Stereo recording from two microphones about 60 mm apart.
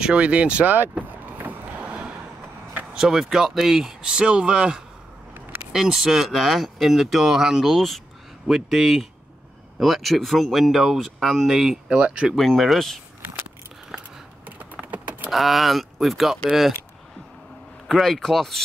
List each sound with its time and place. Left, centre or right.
0.0 s speech: centre
0.7 s vehicle: right
2.9 s speech: centre
12.0 s speech: centre
12.4 s speech: centre
14.4 s typing: right
15.3 s speech: centre
17.8 s speech: centre